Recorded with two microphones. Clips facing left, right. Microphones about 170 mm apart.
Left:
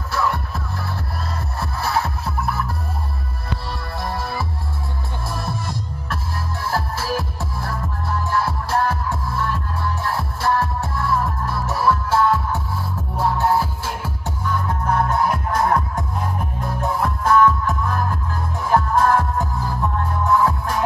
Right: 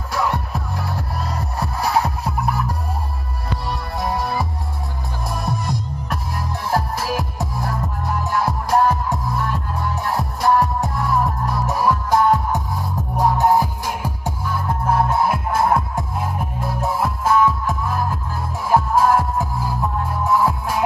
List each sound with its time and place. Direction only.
0.1 s music: 15° right (ahead or behind)
3.6 s music: 15° right (ahead or behind)
5.3 s music: 15° right (ahead or behind)